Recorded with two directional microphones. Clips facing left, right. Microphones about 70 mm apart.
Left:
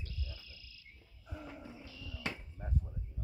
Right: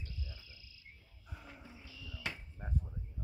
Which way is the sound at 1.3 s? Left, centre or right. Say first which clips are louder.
Left 6 dB; centre.